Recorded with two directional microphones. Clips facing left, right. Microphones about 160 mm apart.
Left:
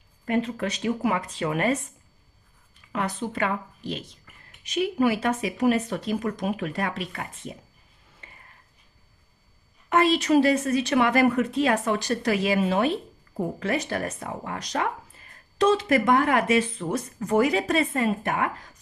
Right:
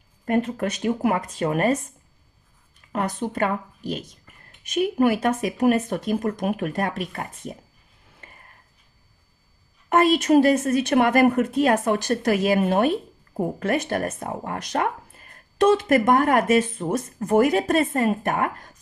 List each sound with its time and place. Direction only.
0.2 s a woman's voice: 50° right (ahead or behind)
2.9 s a woman's voice: 45° right (ahead or behind)
8.2 s a sound: 50° right (ahead or behind)
9.8 s a woman's voice: 45° right (ahead or behind)